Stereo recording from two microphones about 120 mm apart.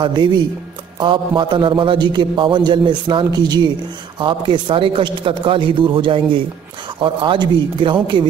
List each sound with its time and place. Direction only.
0.0 s a man's voice: 40° right (ahead or behind)